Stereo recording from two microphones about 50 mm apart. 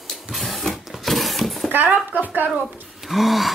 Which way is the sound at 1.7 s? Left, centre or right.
Right.